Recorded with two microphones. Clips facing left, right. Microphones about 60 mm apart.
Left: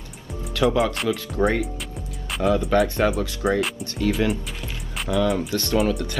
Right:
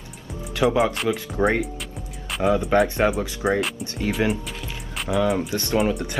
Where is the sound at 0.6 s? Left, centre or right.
Centre.